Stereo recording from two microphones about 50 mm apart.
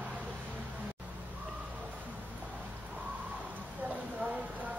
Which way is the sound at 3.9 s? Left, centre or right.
Right.